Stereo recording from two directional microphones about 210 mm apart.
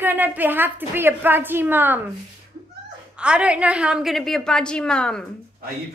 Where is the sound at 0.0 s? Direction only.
10° right (ahead or behind).